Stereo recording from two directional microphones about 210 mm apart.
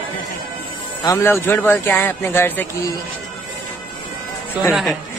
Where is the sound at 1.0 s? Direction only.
15° left (ahead or behind).